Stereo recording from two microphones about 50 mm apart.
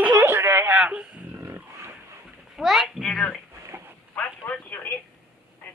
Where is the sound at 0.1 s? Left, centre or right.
Right.